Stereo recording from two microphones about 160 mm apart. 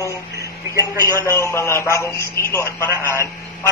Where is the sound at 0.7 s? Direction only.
20° left (ahead or behind).